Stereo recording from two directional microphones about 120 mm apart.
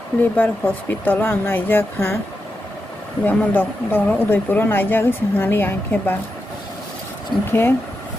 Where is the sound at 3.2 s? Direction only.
15° left (ahead or behind).